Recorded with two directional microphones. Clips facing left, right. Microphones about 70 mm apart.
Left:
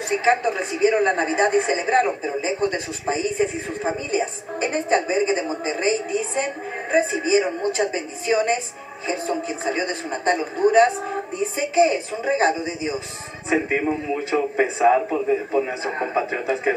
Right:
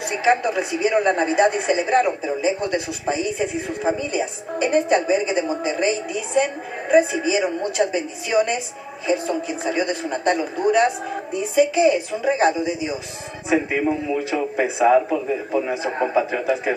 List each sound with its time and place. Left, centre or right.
0.2 s speech: left
13.8 s speech: centre
16.0 s speech: centre